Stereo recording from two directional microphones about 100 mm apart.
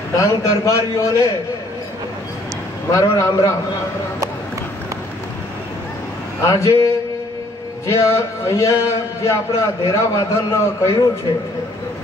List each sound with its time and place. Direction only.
0.2 s a man's voice: 35° left (ahead or behind)
2.9 s a man's voice: 35° left (ahead or behind)
6.4 s a man's voice: 35° left (ahead or behind)